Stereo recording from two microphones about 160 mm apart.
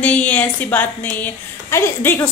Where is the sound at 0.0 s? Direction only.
10° left (ahead or behind).